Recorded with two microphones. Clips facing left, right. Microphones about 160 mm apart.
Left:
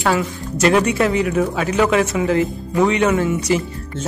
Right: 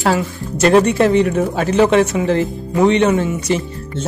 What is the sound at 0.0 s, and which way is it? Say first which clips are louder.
A woman's voice: right 2 dB; 30° right (ahead or behind).